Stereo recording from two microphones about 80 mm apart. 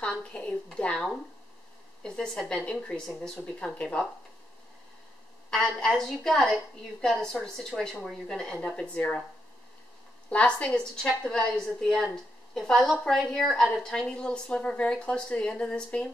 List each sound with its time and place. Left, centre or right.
0.0 s a woman's voice: centre
5.5 s a woman's voice: centre
10.3 s a woman's voice: centre